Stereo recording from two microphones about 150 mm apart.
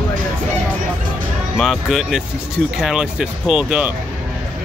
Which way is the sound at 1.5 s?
Centre (ahead or behind).